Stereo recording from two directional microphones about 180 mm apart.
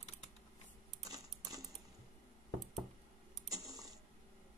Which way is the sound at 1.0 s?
20° right (ahead or behind).